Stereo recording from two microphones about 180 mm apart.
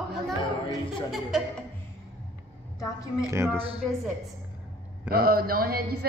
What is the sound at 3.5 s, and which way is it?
Speech, 30° right (ahead or behind).